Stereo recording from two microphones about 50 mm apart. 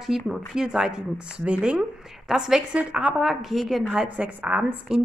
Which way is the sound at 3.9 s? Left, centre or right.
Right.